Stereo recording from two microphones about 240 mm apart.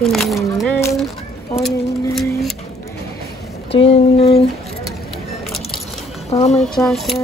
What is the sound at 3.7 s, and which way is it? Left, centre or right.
Speech, left.